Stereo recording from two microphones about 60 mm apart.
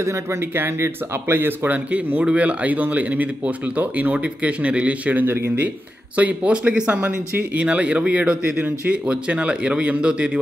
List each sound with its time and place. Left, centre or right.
0.0 s speech: right
0.6 s speech: right
2.2 s speech: right
5.2 s speech: right
6.1 s speech: right